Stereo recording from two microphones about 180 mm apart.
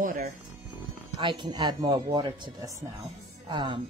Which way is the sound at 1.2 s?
25° right (ahead or behind).